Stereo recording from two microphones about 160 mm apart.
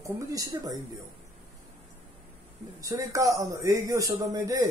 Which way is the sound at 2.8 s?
20° right (ahead or behind).